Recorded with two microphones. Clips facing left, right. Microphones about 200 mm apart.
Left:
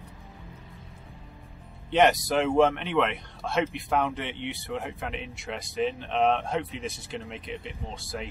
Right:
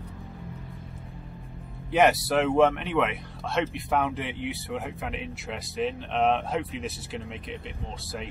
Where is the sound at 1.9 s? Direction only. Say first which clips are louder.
Even; 5° right (ahead or behind).